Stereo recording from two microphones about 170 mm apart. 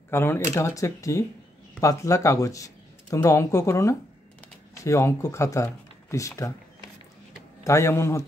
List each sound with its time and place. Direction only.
0.1 s speech: 15° left (ahead or behind)
7.6 s speech: 15° left (ahead or behind)